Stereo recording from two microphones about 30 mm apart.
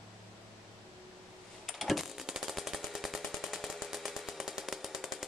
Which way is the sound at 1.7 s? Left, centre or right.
Centre.